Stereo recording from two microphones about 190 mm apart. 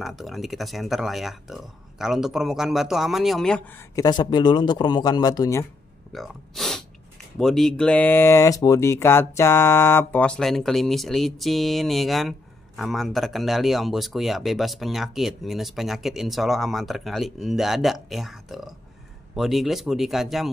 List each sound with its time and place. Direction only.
0.0 s speech: centre (ahead or behind)
3.9 s speech: 20° left (ahead or behind)
6.1 s speech: centre (ahead or behind)